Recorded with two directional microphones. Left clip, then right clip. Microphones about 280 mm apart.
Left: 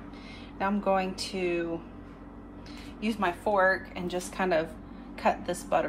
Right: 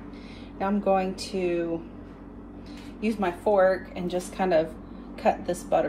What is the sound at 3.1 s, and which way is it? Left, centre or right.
Speech, centre.